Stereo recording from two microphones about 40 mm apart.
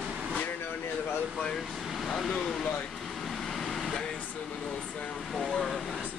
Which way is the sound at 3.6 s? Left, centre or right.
Centre.